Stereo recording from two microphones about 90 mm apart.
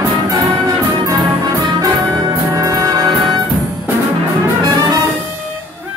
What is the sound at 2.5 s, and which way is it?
Brass instrument, 40° right (ahead or behind).